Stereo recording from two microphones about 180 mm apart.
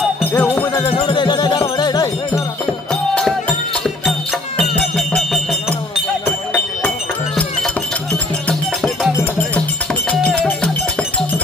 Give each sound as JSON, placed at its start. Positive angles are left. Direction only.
{"t": 0.3, "sound": "music", "side_deg": 10}
{"t": 0.7, "sound": "music", "side_deg": 25}
{"t": 2.9, "sound": "music", "side_deg": 5}